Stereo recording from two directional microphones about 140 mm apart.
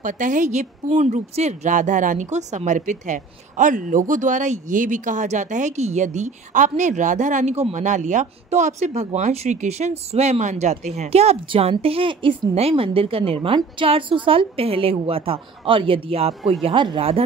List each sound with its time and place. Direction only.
0.0 s a woman's voice: 65° right (ahead or behind); by 17.2 s 40° right (ahead or behind)